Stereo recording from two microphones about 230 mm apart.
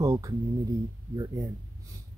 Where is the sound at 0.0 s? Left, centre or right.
Centre.